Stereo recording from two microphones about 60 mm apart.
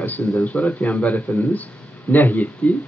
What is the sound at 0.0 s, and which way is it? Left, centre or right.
Speech, left.